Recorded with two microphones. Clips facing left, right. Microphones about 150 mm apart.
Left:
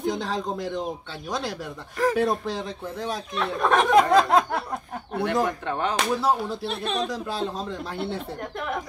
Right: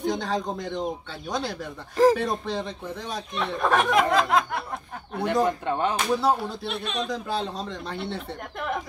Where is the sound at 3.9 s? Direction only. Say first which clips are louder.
Left 4 dB; 35° left (ahead or behind).